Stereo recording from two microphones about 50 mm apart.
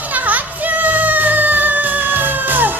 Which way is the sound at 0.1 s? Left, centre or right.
Right.